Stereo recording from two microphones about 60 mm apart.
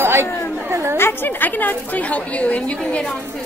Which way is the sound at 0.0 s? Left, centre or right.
Right.